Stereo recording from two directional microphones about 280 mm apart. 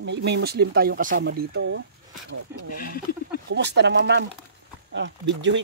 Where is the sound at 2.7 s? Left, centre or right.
Left.